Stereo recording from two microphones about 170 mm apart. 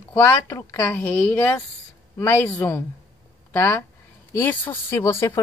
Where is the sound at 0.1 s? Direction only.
15° left (ahead or behind).